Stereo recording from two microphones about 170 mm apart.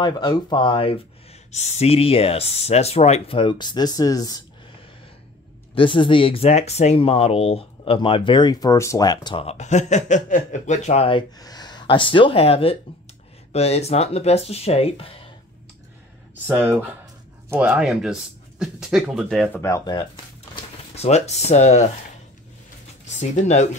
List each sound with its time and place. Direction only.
0.0 s speech: 25° left (ahead or behind)
5.8 s speech: 30° left (ahead or behind)
16.4 s speech: 10° right (ahead or behind)
19.6 s speech: 20° left (ahead or behind)
20.5 s speech: 35° left (ahead or behind)
23.3 s speech: 45° left (ahead or behind)